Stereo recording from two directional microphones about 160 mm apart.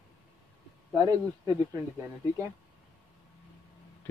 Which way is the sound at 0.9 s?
20° right (ahead or behind).